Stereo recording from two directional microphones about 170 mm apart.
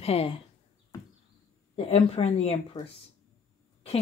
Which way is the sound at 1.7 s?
35° left (ahead or behind).